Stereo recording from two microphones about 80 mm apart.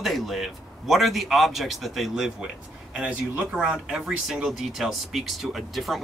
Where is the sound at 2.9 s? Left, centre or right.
Centre.